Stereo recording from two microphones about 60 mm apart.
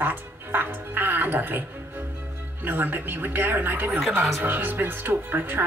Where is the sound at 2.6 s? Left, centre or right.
Right.